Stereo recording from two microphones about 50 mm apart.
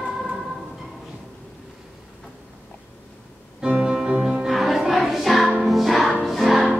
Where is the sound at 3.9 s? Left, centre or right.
Right.